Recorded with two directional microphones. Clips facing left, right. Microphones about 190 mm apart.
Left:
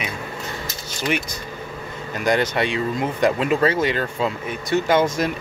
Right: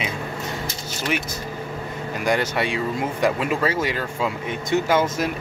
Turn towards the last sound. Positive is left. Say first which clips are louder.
# left 2 dB
turn(degrees=-5)  # may be behind; listen again after turning